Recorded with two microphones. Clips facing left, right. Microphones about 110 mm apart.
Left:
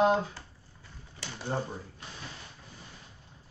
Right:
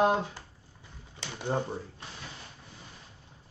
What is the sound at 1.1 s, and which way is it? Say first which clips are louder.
Speech: right 3 dB; 20° right (ahead or behind).